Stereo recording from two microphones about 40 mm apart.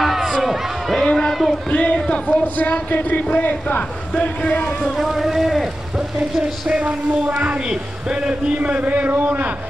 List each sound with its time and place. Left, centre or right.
0.0 s crowd: centre
0.9 s speech: centre
1.7 s speech: left
4.9 s speech: centre
6.7 s speech: right